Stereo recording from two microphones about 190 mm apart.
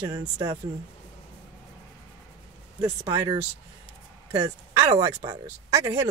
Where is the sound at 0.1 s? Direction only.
20° right (ahead or behind).